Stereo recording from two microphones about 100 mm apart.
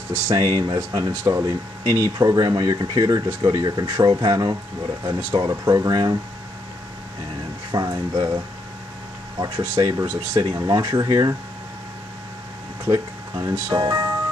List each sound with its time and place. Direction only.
0.4 s speech: 40° right (ahead or behind)
7.7 s speech: 40° right (ahead or behind)
9.8 s speech: 35° right (ahead or behind)
12.8 s speech: 40° right (ahead or behind)